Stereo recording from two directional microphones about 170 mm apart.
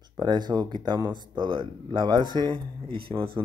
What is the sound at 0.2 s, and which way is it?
Speech, 25° right (ahead or behind).